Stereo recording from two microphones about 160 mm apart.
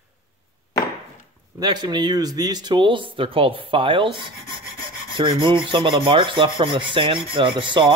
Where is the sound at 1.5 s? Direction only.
25° right (ahead or behind).